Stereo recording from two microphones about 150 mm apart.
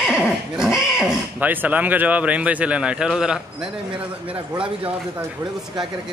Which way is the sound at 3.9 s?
35° right (ahead or behind).